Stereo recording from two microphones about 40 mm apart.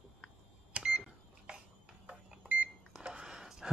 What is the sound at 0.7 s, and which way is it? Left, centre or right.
Microwave oven, right.